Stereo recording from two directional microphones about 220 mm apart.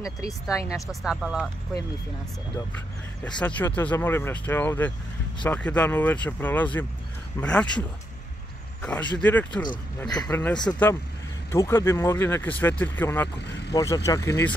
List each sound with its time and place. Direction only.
0.7 s speech: centre (ahead or behind)
3.3 s speech: 5° left (ahead or behind)
8.8 s speech: 5° left (ahead or behind)
10.2 s speech: 5° left (ahead or behind)
13.4 s speech: 50° left (ahead or behind)
13.7 s speech: 15° left (ahead or behind)